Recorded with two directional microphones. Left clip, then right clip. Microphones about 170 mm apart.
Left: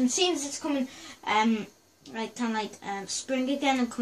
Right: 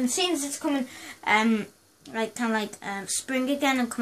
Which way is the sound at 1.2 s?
55° right (ahead or behind).